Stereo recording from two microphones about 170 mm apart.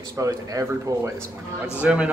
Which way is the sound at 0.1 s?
20° right (ahead or behind).